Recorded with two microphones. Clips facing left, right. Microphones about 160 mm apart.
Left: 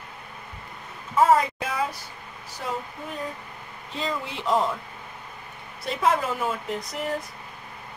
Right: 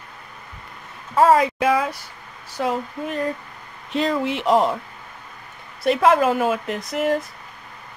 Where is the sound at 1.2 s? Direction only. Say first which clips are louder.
Right 4 dB; 90° right.